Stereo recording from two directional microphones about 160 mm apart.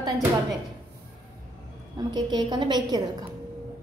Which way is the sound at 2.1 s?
25° right (ahead or behind).